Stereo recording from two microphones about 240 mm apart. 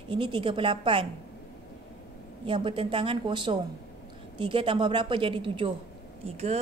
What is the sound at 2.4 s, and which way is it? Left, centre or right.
A woman's voice, right.